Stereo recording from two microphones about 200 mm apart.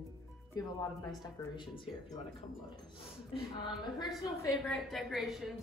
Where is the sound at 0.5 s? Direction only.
20° left (ahead or behind).